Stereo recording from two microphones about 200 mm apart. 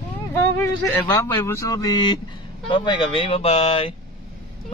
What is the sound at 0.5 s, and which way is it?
Speech, 10° left (ahead or behind).